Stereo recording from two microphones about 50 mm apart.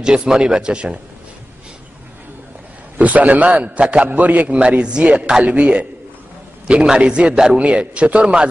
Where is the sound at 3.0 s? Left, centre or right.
Right.